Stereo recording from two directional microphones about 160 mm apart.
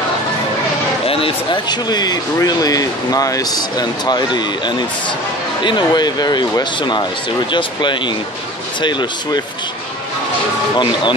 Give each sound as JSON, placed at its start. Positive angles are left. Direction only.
{"t": 1.0, "sound": "speech", "side_deg": 35}